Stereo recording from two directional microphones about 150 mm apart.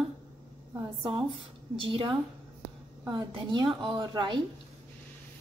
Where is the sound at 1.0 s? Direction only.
35° right (ahead or behind).